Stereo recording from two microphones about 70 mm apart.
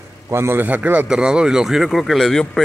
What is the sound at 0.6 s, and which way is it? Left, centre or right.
Speech, right.